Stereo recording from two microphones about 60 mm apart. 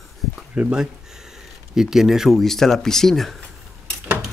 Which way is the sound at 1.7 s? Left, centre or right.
Centre.